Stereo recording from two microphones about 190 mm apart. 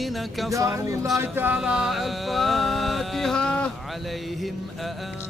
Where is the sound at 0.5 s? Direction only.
15° right (ahead or behind).